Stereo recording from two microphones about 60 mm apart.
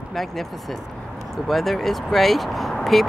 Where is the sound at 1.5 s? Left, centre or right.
Centre.